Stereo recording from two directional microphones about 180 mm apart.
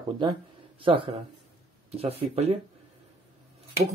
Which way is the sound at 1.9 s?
35° right (ahead or behind).